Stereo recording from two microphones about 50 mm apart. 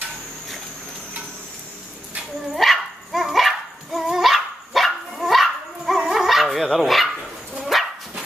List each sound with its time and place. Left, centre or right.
2.5 s dog: centre
6.8 s speech: centre
7.7 s dog: centre